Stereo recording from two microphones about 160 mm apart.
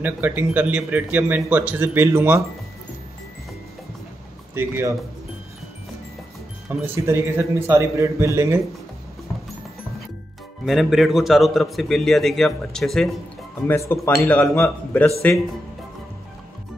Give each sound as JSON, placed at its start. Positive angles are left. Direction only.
{"t": 0.0, "sound": "a man's voice", "side_deg": -10}
{"t": 4.6, "sound": "a man's voice", "side_deg": -15}
{"t": 6.7, "sound": "a man's voice", "side_deg": -15}
{"t": 10.6, "sound": "a man's voice", "side_deg": 0}
{"t": 13.7, "sound": "a man's voice", "side_deg": 15}